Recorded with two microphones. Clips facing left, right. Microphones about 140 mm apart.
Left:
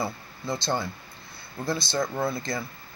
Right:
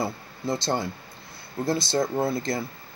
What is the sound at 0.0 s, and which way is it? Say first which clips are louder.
Speech: right 3 dB; 40° right (ahead or behind).